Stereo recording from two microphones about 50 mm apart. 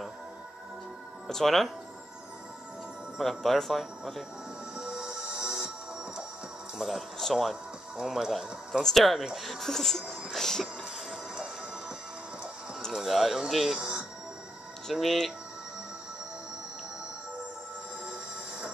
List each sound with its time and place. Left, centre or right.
1.2 s speech: centre
3.2 s speech: centre
4.7 s music: centre
6.8 s speech: centre
12.9 s speech: centre
13.7 s music: centre
14.9 s speech: centre